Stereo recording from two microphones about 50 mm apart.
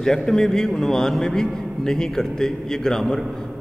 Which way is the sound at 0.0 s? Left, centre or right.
Centre.